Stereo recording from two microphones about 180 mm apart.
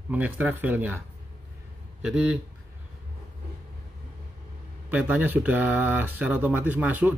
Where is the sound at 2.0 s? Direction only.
5° right (ahead or behind).